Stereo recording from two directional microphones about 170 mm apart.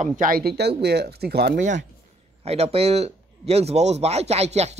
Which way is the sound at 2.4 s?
35° right (ahead or behind).